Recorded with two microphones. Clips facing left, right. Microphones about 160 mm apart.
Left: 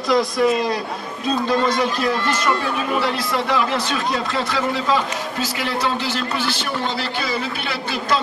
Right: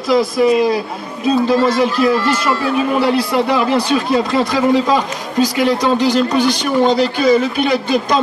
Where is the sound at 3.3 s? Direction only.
15° right (ahead or behind).